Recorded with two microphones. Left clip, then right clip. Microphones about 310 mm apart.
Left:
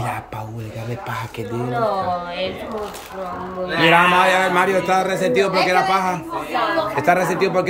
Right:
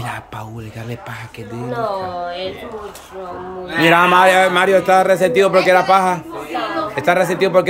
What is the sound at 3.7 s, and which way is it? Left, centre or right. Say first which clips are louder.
A man's voice: right 2 dB; centre.